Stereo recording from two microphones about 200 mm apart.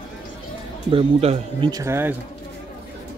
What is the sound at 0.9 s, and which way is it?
Speech, 30° right (ahead or behind).